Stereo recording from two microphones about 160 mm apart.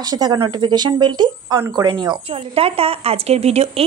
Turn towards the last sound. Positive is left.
turn(degrees=-40)  # may be behind; listen again after turning